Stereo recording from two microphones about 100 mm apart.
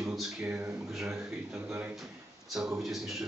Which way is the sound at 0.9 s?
5° right (ahead or behind).